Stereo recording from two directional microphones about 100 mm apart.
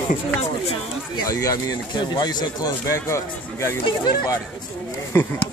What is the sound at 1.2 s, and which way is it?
Speech, 35° left (ahead or behind).